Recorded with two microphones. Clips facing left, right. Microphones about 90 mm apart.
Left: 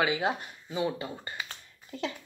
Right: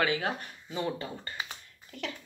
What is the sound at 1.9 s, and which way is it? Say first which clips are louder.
Speech: left 5 dB; 25° left (ahead or behind).